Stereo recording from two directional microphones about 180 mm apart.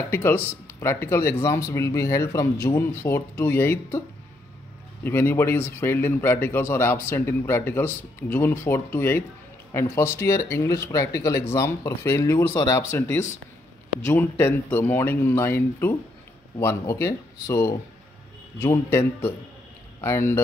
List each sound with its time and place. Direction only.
0.1 s a man's voice: 10° left (ahead or behind)
5.0 s a man's voice: 15° left (ahead or behind)